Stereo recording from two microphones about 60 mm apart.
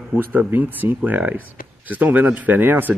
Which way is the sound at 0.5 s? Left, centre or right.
Right.